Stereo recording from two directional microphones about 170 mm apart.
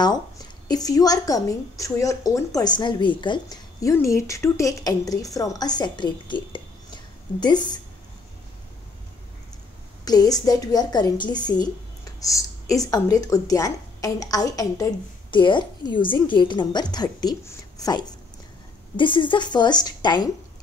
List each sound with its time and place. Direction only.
0.7 s a woman's voice: 20° left (ahead or behind)
10.0 s a woman's voice: 20° left (ahead or behind)